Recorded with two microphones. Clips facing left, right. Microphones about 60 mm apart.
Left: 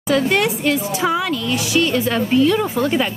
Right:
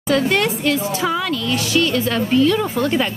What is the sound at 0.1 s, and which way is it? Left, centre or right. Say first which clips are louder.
A woman's voice: even; centre.